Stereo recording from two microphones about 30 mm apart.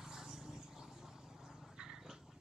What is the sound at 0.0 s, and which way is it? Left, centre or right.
Vehicle, centre.